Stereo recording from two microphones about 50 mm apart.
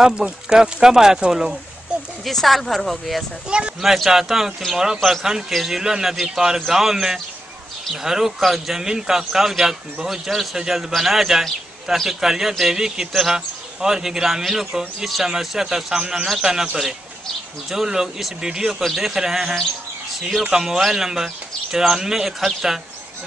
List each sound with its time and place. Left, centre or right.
0.0 s a man's voice: centre
2.2 s speech: centre
3.4 s speech: centre
3.8 s a man's voice: centre
13.1 s a man's voice: centre
17.6 s a man's voice: centre